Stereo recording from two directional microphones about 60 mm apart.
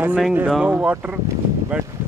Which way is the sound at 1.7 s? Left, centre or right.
Centre.